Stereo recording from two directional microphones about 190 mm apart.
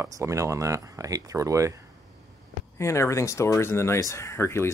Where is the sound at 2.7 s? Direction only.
15° left (ahead or behind).